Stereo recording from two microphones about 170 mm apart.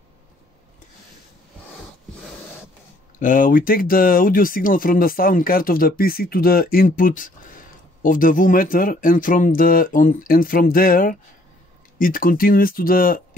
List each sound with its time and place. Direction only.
3.2 s speech: 55° left (ahead or behind)